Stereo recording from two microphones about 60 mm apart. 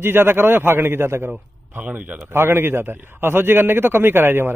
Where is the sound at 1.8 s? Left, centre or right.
Right.